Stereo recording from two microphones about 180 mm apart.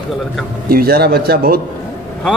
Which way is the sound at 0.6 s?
55° right (ahead or behind).